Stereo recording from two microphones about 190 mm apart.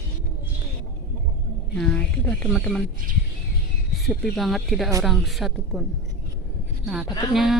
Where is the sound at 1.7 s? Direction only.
5° left (ahead or behind).